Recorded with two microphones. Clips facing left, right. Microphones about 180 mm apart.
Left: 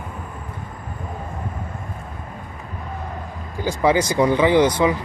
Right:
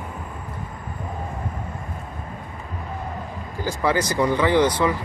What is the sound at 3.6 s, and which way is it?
Speech, 20° left (ahead or behind).